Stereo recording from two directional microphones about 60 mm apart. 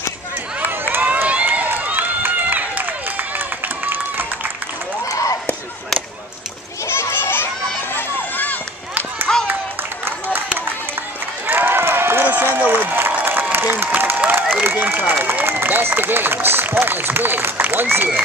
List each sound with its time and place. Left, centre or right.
0.7 s run: right
5.0 s a sound: left
6.9 s children playing: left
7.9 s crowd: left
9.3 s a sound: centre
10.0 s run: right
11.4 s run: right
12.7 s applause: right
16.8 s a sound: right